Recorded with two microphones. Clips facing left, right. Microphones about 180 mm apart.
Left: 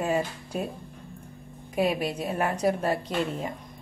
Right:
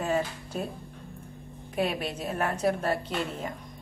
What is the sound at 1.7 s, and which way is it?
A woman's voice, 5° left (ahead or behind).